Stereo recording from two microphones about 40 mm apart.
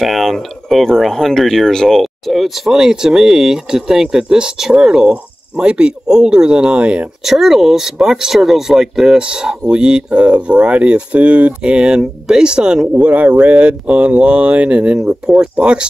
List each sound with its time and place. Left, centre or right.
0.0 s speech: centre
2.0 s speech: centre
2.7 s speech: centre
7.2 s speech: centre
13.0 s speech: right